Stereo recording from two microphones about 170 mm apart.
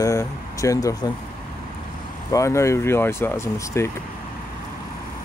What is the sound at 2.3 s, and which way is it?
Speech, 20° left (ahead or behind).